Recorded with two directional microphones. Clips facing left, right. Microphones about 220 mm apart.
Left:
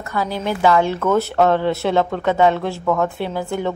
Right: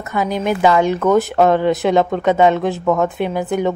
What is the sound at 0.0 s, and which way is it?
Speech, 20° right (ahead or behind).